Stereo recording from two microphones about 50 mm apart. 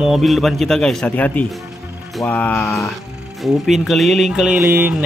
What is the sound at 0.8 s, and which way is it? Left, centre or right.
Speech, centre.